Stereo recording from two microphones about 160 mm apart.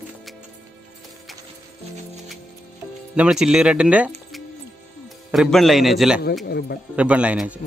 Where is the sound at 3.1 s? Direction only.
5° right (ahead or behind).